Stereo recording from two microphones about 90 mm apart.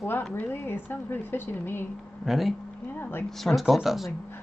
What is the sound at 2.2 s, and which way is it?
Speech, centre (ahead or behind).